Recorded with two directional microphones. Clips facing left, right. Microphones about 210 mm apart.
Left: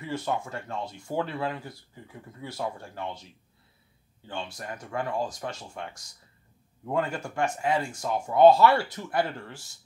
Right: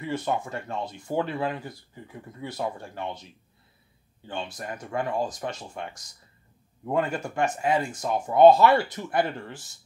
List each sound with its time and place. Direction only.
0.0 s speech: 20° right (ahead or behind)
4.3 s speech: 20° right (ahead or behind)